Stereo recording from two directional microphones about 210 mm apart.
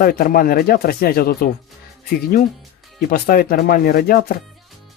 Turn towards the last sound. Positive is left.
turn(degrees=45)  # may be behind; listen again after turning